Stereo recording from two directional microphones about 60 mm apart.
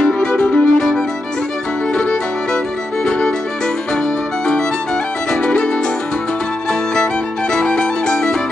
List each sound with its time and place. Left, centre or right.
0.0 s music: centre
5.3 s music: centre
7.5 s music: centre